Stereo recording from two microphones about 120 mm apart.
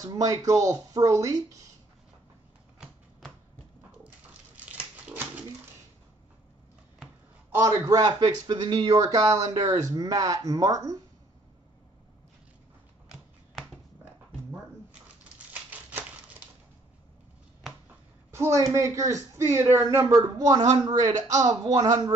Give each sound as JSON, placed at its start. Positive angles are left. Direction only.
{"t": 0.0, "sound": "speech", "side_deg": -30}
{"t": 4.6, "sound": "dog", "side_deg": -15}
{"t": 7.5, "sound": "speech", "side_deg": -30}
{"t": 18.3, "sound": "speech", "side_deg": -25}